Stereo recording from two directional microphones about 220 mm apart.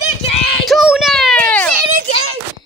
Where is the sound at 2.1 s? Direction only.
70° right (ahead or behind).